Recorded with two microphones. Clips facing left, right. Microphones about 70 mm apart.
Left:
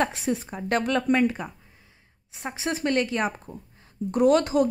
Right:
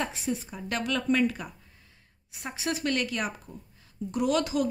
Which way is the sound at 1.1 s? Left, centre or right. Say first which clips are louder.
Left 3 dB; left.